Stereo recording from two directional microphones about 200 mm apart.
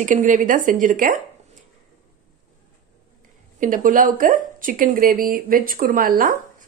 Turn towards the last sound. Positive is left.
turn(degrees=-45)  # may be behind; listen again after turning